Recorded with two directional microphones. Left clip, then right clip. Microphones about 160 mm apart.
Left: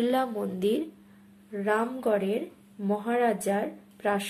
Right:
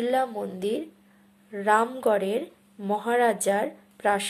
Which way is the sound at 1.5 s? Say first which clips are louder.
Right 5 dB; 30° right (ahead or behind).